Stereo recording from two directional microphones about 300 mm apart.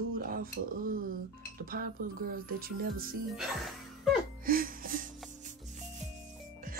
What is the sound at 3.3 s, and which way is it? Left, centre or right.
Speech, centre.